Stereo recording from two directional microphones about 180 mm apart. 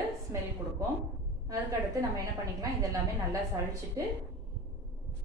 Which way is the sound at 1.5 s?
20° right (ahead or behind).